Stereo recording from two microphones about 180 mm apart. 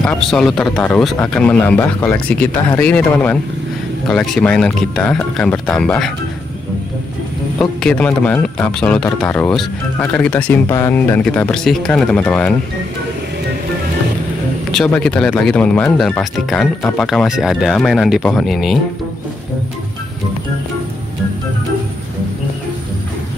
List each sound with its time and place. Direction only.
0.0 s a man's voice: 5° left (ahead or behind)
7.5 s a man's voice: 5° left (ahead or behind)
14.7 s speech: 5° left (ahead or behind)